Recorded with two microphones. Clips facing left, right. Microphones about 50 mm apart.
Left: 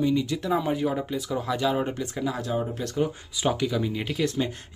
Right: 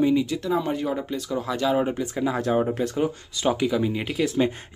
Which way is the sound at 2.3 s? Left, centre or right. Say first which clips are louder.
Right 6 dB; right.